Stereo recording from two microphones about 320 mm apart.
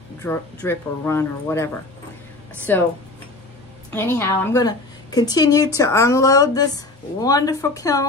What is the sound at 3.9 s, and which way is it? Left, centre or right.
A woman's voice, centre.